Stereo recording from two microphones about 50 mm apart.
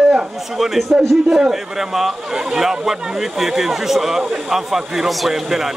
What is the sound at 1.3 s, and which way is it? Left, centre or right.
A man's voice, centre.